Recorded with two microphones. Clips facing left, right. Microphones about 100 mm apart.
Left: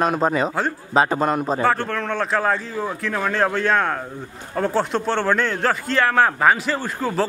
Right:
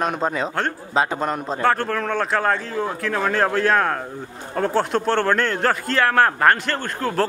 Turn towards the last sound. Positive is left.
turn(degrees=5)  # may be behind; listen again after turning